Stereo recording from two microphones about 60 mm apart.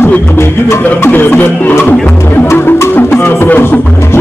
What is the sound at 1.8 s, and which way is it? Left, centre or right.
Music, left.